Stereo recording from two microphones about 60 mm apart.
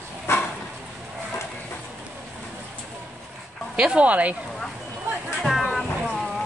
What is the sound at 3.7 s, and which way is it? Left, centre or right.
Speech, centre.